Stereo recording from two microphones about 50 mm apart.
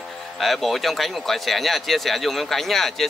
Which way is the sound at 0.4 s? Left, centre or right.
Centre.